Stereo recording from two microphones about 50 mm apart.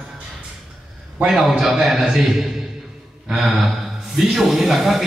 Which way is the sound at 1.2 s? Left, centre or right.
Centre.